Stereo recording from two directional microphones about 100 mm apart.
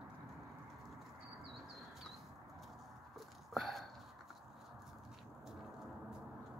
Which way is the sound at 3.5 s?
Centre (ahead or behind).